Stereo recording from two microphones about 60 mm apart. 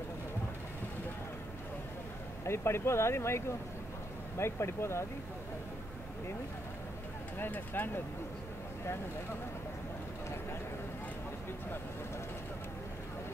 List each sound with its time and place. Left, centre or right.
2.4 s speech: left
7.3 s speech: left